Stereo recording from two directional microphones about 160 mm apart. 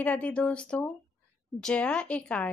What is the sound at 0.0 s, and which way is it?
Speech, 10° left (ahead or behind).